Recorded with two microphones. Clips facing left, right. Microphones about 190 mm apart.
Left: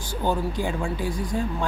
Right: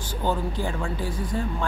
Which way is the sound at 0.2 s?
15° left (ahead or behind).